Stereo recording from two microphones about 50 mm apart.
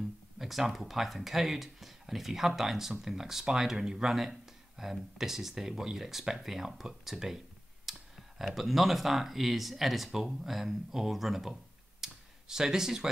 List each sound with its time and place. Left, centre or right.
0.4 s speech: centre
7.9 s clicking: centre
8.5 s speech: centre
12.0 s a sound: centre